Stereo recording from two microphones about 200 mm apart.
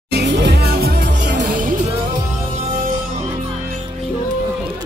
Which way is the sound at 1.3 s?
40° right (ahead or behind).